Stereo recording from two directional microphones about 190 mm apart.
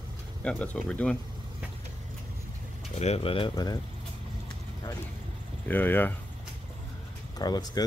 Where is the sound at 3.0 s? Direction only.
30° left (ahead or behind).